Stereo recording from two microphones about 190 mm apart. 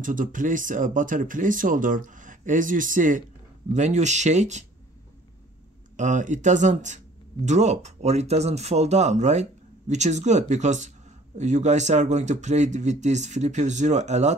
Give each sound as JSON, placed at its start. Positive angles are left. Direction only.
{"t": 0.0, "sound": "speech", "side_deg": -45}
{"t": 5.9, "sound": "speech", "side_deg": -40}